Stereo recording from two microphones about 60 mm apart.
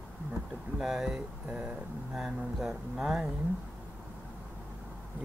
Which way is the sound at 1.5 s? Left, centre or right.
Centre.